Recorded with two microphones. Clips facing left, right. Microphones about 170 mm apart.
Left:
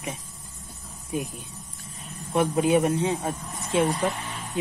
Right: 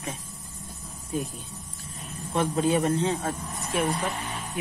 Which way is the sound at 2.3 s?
15° left (ahead or behind).